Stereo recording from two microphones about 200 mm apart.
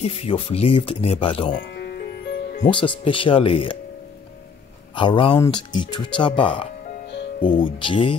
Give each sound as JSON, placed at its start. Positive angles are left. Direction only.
{"t": 0.0, "sound": "speech", "side_deg": 30}
{"t": 1.6, "sound": "music", "side_deg": 55}
{"t": 2.6, "sound": "speech", "side_deg": 25}
{"t": 4.9, "sound": "speech", "side_deg": 25}